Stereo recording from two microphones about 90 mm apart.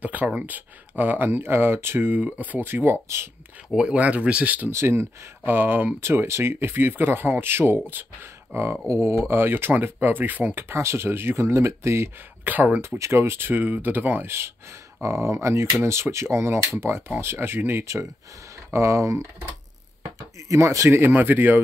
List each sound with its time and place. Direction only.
0.0 s speech: 15° right (ahead or behind)
3.7 s speech: 15° right (ahead or behind)
4.6 s speech: 30° right (ahead or behind)
12.4 s speech: 15° right (ahead or behind)
12.8 s speech: 30° right (ahead or behind)
20.4 s speech: 35° right (ahead or behind)